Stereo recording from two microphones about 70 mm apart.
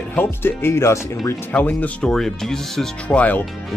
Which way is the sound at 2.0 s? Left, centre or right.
Centre.